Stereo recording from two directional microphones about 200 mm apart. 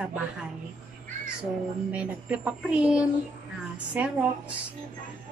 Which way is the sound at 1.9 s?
5° right (ahead or behind).